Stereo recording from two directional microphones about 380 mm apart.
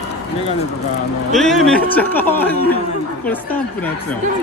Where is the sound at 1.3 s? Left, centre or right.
Centre.